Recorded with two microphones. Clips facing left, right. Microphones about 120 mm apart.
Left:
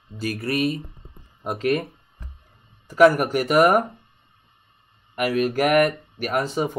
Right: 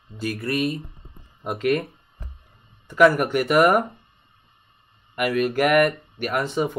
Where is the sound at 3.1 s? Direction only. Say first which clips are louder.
Even; 40° left (ahead or behind).